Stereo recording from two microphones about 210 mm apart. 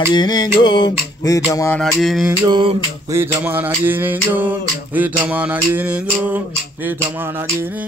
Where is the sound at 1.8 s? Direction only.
Centre (ahead or behind).